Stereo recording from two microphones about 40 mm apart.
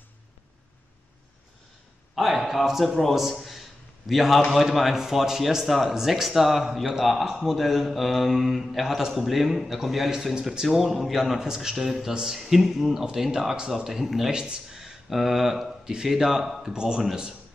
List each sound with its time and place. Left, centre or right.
2.1 s a man's voice: centre
3.0 s speech: centre
3.3 s a sound: centre
4.1 s a man's voice: centre
10.8 s a man's voice: centre
15.8 s a man's voice: centre